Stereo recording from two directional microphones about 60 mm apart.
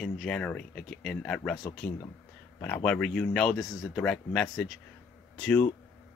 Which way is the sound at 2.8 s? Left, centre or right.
Centre.